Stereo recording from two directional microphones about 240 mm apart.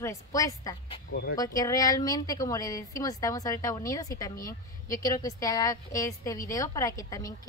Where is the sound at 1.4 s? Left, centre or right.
Centre.